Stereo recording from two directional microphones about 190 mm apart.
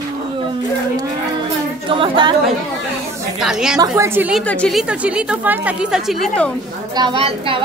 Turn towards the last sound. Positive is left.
turn(degrees=-30)  # may be behind; listen again after turning